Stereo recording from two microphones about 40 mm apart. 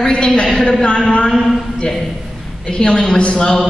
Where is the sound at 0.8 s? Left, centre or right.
Left.